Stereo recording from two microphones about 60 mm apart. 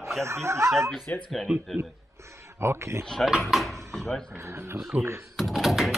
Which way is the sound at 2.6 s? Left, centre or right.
Right.